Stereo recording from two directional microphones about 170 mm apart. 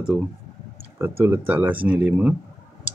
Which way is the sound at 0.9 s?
15° right (ahead or behind).